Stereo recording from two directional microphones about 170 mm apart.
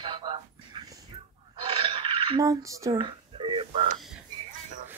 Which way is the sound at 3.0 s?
30° right (ahead or behind).